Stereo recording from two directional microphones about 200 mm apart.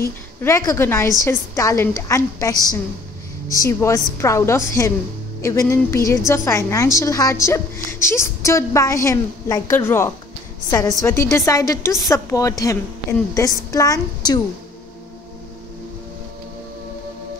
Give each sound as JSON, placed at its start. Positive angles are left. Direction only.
{"t": 0.4, "sound": "a woman's voice", "side_deg": 15}